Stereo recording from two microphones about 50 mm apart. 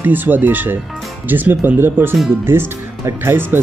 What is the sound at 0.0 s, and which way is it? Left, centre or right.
Speech, right.